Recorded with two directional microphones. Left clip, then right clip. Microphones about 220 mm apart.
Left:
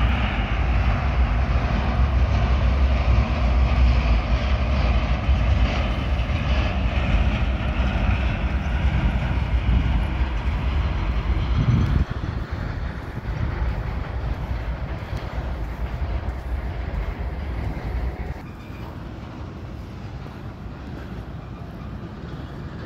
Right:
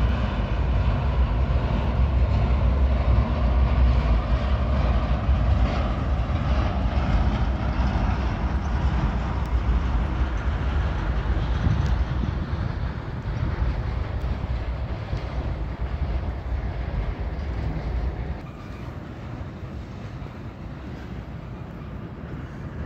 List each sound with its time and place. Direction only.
0.0 s vehicle: 45° right (ahead or behind)
1.6 s vehicle: 25° right (ahead or behind)
3.0 s vehicle: 5° right (ahead or behind); by 7.0 s 10° left (ahead or behind)
7.0 s vehicle: 25° left (ahead or behind); by 12.6 s 45° left (ahead or behind)